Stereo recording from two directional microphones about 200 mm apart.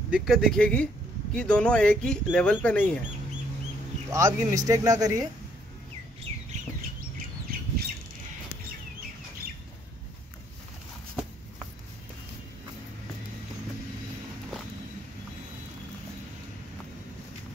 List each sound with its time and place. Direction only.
0.1 s speech: centre (ahead or behind)
4.1 s speech: 15° right (ahead or behind)